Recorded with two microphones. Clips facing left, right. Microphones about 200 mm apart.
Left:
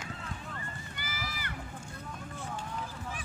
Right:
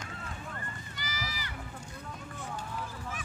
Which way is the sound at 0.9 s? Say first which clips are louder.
Right 2 dB; 55° left (ahead or behind).